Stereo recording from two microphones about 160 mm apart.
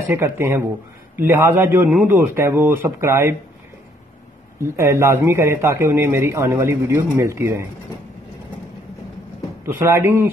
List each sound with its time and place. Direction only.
0.1 s a man's voice: 15° right (ahead or behind)
4.7 s a man's voice: 20° right (ahead or behind)
9.7 s a man's voice: 15° right (ahead or behind)